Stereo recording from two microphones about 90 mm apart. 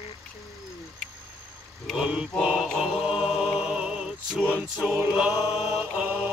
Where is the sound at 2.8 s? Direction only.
5° right (ahead or behind).